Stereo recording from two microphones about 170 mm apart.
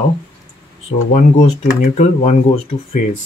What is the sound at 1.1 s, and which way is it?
Speech, 45° left (ahead or behind).